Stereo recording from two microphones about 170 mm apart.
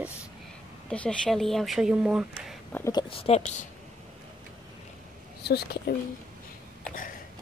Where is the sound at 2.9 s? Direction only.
35° left (ahead or behind).